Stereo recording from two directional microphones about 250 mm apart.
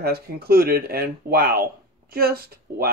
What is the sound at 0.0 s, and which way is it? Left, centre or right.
Speech, right.